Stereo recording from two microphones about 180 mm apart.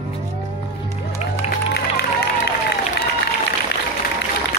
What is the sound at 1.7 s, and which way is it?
Music, 65° left (ahead or behind).